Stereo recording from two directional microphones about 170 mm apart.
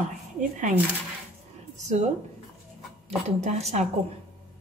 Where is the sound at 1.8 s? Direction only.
45° right (ahead or behind).